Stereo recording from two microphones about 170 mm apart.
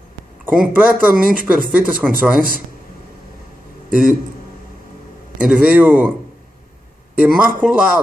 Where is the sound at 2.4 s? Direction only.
55° right (ahead or behind).